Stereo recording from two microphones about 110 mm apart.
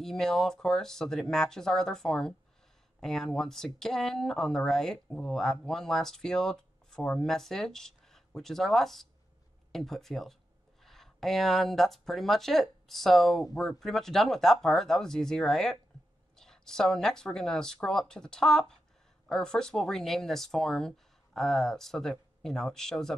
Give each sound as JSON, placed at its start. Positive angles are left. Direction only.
{"t": 0.0, "sound": "speech", "side_deg": 5}